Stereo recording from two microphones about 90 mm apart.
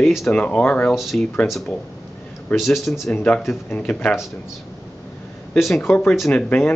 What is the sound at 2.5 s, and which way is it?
Speech, centre (ahead or behind).